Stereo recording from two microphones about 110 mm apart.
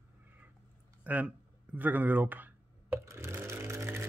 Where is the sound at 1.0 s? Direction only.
15° right (ahead or behind).